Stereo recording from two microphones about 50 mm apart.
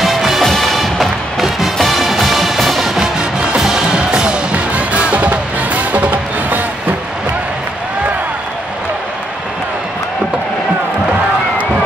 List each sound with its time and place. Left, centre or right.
0.0 s music: centre
0.4 s music: centre
3.2 s music: centre; by 6.6 s right